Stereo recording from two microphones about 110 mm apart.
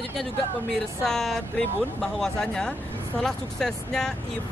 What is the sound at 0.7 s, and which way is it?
Speech, 5° left (ahead or behind).